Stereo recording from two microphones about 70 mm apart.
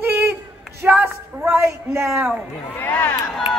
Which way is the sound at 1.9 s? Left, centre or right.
Right.